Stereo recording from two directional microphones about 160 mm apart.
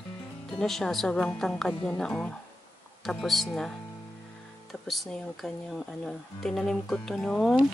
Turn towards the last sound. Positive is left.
turn(degrees=5)  # may be behind; listen again after turning